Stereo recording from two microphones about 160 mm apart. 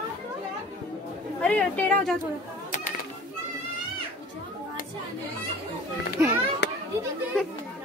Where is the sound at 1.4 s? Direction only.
5° left (ahead or behind).